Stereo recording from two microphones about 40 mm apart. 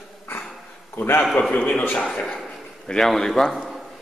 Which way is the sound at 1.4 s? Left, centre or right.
Left.